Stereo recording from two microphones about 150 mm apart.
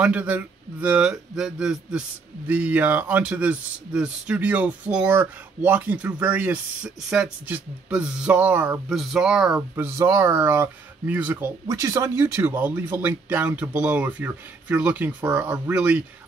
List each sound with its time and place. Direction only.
0.0 s speech: 10° right (ahead or behind)
8.8 s speech: 5° right (ahead or behind)
9.6 s speech: 15° right (ahead or behind)